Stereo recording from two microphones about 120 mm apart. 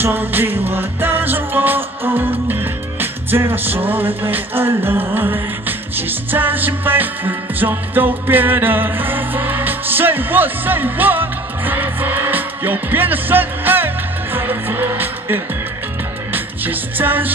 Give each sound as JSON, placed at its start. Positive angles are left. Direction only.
{"t": 0.0, "sound": "music", "side_deg": -15}
{"t": 16.6, "sound": "music", "side_deg": -15}